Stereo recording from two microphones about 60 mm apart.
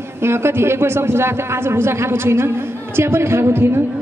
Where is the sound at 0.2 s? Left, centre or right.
Right.